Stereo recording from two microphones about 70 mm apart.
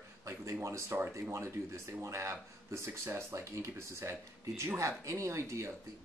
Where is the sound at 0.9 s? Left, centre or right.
Right.